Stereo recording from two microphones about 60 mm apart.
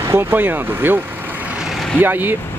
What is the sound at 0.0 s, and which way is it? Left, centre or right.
Vehicle, right.